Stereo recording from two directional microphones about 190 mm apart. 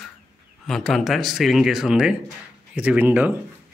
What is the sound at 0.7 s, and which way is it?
Speech, centre (ahead or behind).